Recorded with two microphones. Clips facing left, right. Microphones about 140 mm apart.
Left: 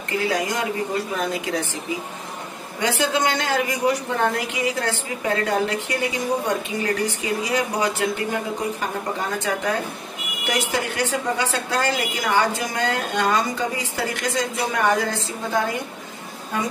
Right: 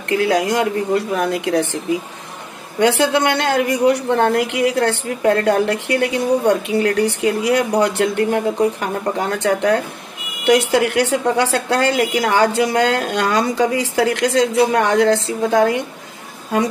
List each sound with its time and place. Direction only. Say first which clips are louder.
0.1 s a woman's voice: right 7 dB; 70° right (ahead or behind)
3.0 s a woman's voice: right 5 dB; 65° right (ahead or behind); by 15.8 s 85° right